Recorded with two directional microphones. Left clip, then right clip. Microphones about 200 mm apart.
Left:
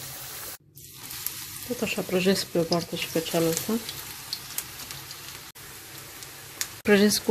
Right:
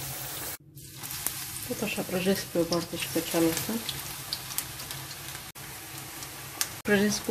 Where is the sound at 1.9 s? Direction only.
55° left (ahead or behind).